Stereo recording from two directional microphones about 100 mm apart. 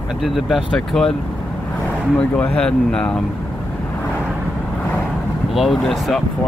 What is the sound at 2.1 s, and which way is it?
Speech, 10° left (ahead or behind).